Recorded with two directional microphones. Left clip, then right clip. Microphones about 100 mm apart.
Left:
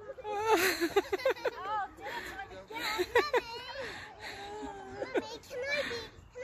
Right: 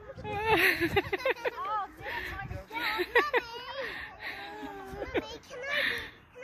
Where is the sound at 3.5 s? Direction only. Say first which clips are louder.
Right 1 dB; centre (ahead or behind).